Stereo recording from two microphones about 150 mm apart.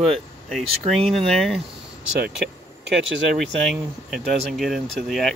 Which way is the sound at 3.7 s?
Centre (ahead or behind).